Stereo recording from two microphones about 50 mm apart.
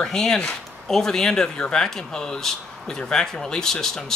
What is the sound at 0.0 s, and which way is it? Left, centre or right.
Speech, centre.